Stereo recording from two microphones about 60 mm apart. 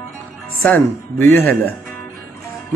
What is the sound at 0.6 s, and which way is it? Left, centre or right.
Speech, left.